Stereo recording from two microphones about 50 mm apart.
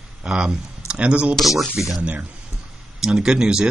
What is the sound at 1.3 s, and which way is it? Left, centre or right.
Speech, centre.